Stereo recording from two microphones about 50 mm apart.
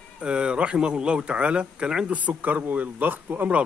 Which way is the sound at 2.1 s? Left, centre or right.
Right.